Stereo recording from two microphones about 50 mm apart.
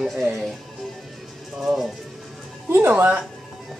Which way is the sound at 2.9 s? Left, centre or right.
Right.